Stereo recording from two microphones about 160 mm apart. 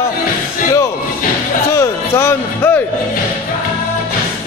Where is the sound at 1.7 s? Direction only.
15° left (ahead or behind).